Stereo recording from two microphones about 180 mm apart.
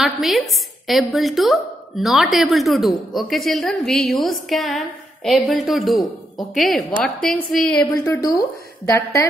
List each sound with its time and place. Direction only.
0.0 s a woman's voice: centre (ahead or behind)
7.9 s a woman's voice: 15° left (ahead or behind)